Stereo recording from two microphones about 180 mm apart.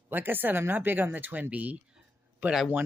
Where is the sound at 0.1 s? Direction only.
10° right (ahead or behind).